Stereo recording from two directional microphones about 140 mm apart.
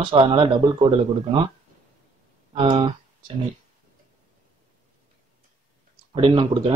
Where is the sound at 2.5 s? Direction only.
35° right (ahead or behind).